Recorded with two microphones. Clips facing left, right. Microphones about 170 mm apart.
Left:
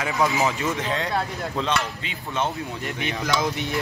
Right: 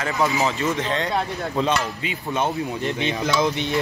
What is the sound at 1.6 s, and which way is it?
Speech, 10° right (ahead or behind).